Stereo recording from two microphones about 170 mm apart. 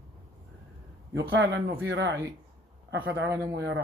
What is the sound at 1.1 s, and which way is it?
Speech, 90° right.